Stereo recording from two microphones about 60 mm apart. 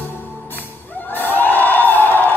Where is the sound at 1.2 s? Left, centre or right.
Left.